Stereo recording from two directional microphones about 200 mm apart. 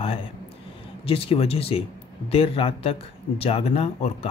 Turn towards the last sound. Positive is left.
turn(degrees=30)  # may be behind; listen again after turning